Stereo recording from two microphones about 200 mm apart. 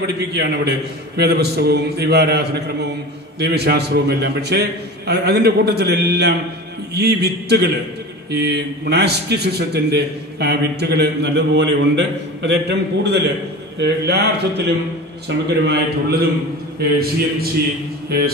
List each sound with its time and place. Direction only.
0.0 s a man's voice: 55° right (ahead or behind)